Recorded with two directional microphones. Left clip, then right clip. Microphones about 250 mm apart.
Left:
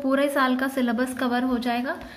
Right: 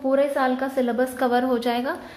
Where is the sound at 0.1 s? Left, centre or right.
Centre.